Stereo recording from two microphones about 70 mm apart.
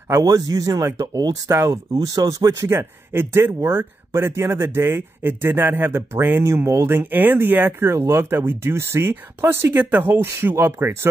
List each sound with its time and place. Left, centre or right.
0.2 s speech: right
1.5 s speech: right
2.7 s speech: right
7.0 s speech: right
7.9 s speech: right